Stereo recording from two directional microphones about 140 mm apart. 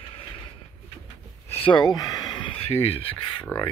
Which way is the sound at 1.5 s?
40° left (ahead or behind).